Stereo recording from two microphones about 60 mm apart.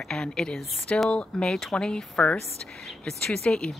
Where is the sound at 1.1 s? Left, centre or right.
Centre.